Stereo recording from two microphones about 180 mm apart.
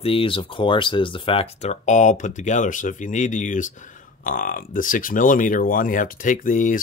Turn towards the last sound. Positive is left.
turn(degrees=50)  # may be behind; listen again after turning